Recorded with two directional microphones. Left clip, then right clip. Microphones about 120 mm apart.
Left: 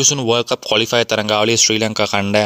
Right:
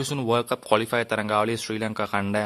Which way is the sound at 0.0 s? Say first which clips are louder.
Left 9 dB; 30° left (ahead or behind).